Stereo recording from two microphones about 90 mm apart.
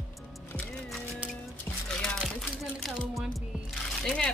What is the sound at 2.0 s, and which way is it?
Music, centre (ahead or behind).